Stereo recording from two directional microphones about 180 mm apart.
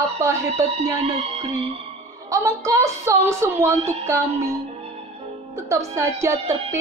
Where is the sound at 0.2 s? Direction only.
15° right (ahead or behind).